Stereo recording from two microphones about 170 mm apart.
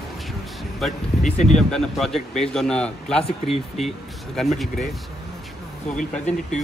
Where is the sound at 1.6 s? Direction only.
5° left (ahead or behind).